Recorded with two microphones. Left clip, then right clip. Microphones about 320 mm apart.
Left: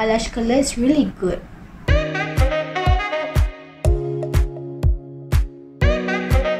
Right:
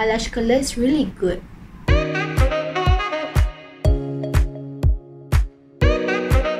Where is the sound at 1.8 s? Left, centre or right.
Centre.